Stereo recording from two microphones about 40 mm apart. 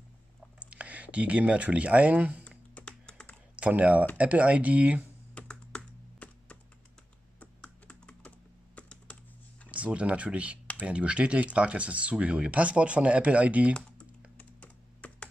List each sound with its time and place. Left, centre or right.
0.6 s speech: right
2.7 s computer keyboard: left
3.5 s speech: right
5.3 s computer keyboard: left
7.9 s computer keyboard: left
9.7 s speech: right
14.3 s computer keyboard: left